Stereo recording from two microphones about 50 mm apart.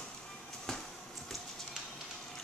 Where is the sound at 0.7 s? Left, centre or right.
Centre.